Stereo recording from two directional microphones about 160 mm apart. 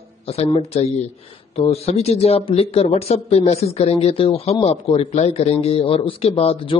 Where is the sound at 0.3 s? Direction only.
40° left (ahead or behind).